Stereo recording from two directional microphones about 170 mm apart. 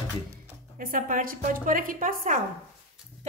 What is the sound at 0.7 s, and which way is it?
A woman's voice, 55° right (ahead or behind).